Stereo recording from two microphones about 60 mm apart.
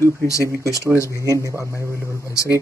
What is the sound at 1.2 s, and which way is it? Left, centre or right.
Speech, right.